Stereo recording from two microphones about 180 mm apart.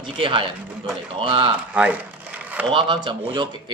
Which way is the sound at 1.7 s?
10° right (ahead or behind).